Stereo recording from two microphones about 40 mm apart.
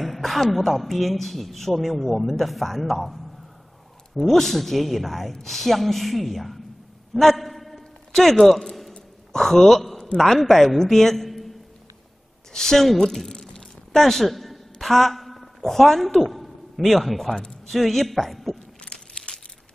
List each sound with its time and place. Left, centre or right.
0.0 s a man's voice: centre
7.2 s a sound: centre
10.1 s a woman's voice: centre
12.5 s a woman's voice: centre
13.3 s a sound: centre
13.9 s a man's voice: centre
18.9 s crumpling: left